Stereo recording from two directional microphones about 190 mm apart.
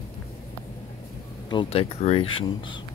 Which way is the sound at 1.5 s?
25° left (ahead or behind).